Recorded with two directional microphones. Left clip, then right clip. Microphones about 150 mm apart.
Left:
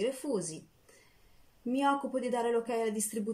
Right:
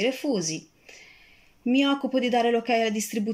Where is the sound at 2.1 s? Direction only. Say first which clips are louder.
Right 8 dB; 30° left (ahead or behind).